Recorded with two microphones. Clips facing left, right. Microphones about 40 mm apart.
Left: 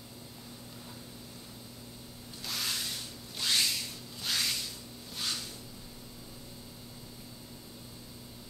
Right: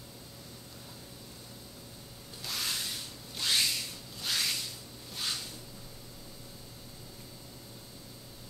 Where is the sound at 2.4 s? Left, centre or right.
Centre.